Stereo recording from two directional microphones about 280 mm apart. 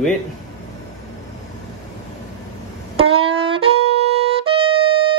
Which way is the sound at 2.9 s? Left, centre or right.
Centre.